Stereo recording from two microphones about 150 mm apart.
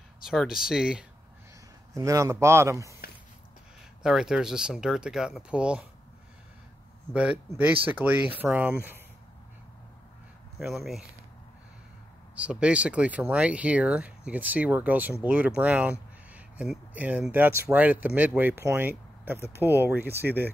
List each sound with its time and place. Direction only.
0.3 s speech: 5° right (ahead or behind)
2.0 s speech: 20° right (ahead or behind)
4.0 s speech: 5° right (ahead or behind)
7.2 s speech: 10° right (ahead or behind)
10.6 s speech: centre (ahead or behind)
12.4 s speech: 5° right (ahead or behind)